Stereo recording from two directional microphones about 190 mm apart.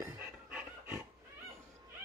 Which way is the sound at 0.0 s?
10° right (ahead or behind).